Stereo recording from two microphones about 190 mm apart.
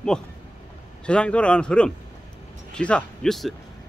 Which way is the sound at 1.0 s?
5° left (ahead or behind).